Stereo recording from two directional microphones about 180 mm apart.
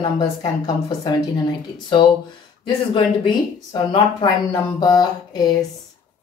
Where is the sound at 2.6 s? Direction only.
25° left (ahead or behind).